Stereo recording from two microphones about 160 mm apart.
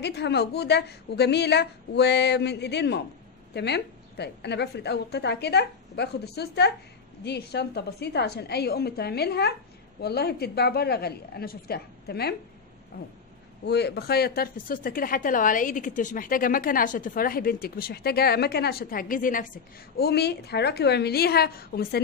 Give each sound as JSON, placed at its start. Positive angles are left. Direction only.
{"t": 0.0, "sound": "a woman's voice", "side_deg": 90}
{"t": 13.7, "sound": "speech", "side_deg": 90}
{"t": 20.0, "sound": "a woman's voice", "side_deg": 90}